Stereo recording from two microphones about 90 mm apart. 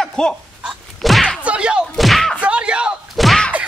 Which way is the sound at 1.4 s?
15° right (ahead or behind).